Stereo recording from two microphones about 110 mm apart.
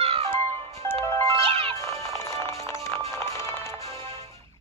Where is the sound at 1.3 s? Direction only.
60° right (ahead or behind).